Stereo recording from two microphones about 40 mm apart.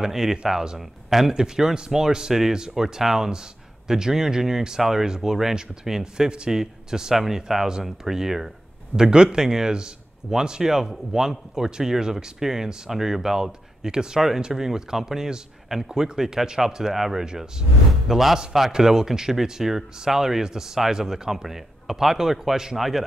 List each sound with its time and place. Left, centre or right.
0.0 s speech: centre